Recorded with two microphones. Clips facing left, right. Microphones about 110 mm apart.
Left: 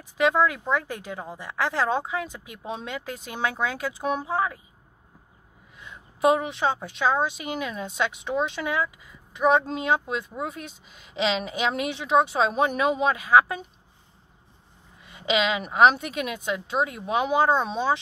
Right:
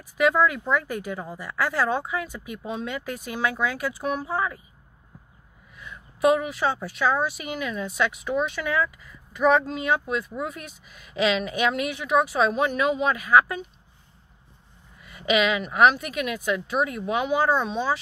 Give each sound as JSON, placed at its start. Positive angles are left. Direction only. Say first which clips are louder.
{"t": 0.2, "sound": "a woman's voice", "louder": "right 1 dB", "side_deg": 20}
{"t": 5.8, "sound": "a woman's voice", "louder": "right 1 dB", "side_deg": 25}
{"t": 15.0, "sound": "a woman's voice", "louder": "right 2 dB", "side_deg": 25}